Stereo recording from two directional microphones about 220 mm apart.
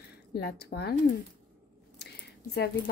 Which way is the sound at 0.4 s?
45° left (ahead or behind).